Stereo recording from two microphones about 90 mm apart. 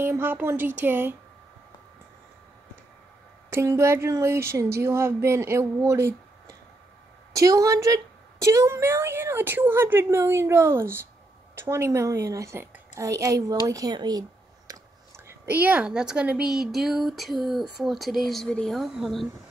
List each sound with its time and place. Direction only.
0.0 s a woman's voice: 25° right (ahead or behind)
3.4 s a woman's voice: 30° right (ahead or behind)
12.5 s a sound: 25° right (ahead or behind)
13.0 s a woman's voice: 35° right (ahead or behind)
14.7 s a sound: 40° right (ahead or behind)
15.1 s a woman's voice: 25° right (ahead or behind); by 19.2 s centre (ahead or behind)